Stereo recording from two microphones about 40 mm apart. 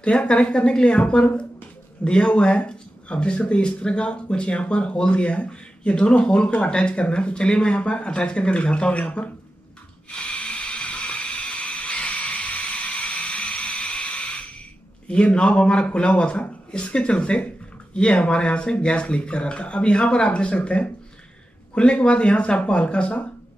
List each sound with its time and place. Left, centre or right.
0.0 s speech: left
10.0 s a sound: left
15.0 s speech: left